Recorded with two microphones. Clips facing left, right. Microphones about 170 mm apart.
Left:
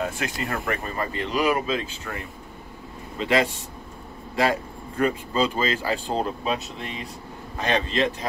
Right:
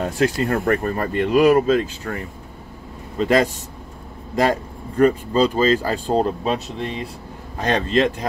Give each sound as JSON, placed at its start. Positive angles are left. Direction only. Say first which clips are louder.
{"t": 0.0, "sound": "speech", "louder": "right 8 dB", "side_deg": -40}
{"t": 3.2, "sound": "speech", "louder": "right 5 dB", "side_deg": -45}
{"t": 7.6, "sound": "speech", "louder": "right 5 dB", "side_deg": -45}